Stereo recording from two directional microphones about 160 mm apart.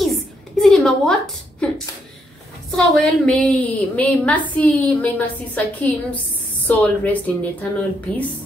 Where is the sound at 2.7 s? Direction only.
5° left (ahead or behind).